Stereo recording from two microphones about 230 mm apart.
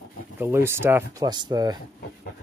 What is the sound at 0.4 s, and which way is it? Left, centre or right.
Speech, centre.